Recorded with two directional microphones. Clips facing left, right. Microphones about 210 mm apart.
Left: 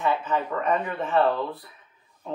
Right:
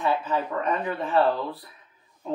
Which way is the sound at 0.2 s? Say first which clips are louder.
Even; 35° right (ahead or behind).